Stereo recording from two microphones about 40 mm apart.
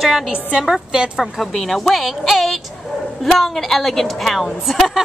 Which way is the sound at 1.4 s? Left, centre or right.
Centre.